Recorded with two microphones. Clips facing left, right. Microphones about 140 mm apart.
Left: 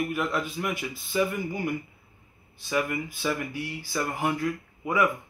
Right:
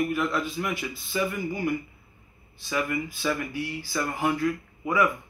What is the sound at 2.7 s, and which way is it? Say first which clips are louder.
Speech: even; 20° left (ahead or behind).